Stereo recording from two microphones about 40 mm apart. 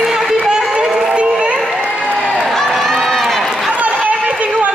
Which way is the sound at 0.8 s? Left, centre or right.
Centre.